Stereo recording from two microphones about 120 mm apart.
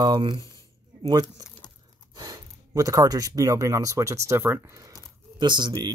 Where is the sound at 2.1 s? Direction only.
35° right (ahead or behind).